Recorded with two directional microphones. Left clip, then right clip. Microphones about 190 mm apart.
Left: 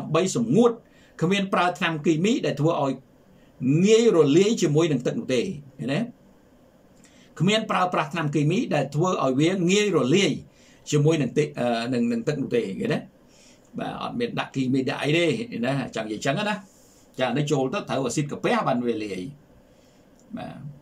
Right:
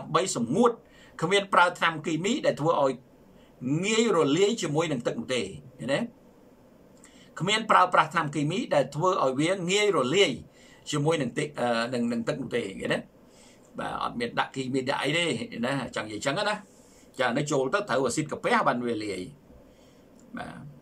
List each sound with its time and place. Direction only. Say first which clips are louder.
0.1 s speech: left 4 dB; 15° left (ahead or behind)
7.3 s speech: right 1 dB; 15° left (ahead or behind)